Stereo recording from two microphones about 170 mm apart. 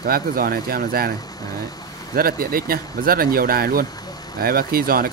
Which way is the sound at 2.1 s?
60° right (ahead or behind).